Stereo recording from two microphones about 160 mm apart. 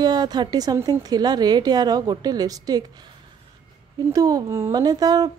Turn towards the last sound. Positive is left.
turn(degrees=-25)  # may be behind; listen again after turning